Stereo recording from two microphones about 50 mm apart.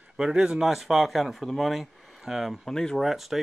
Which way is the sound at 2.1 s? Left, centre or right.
Centre.